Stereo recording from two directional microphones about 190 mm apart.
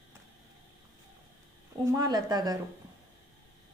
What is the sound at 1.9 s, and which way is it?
Speech, 20° right (ahead or behind).